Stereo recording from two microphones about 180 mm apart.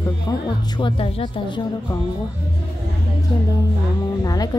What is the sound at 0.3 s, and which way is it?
A woman's voice, 20° left (ahead or behind).